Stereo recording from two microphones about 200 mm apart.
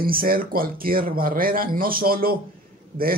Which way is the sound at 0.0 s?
45° right (ahead or behind).